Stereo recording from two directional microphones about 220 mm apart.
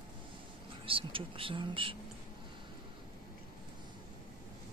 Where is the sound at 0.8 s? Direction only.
25° right (ahead or behind).